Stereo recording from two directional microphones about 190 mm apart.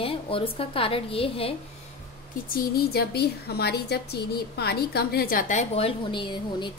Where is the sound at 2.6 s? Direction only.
55° left (ahead or behind).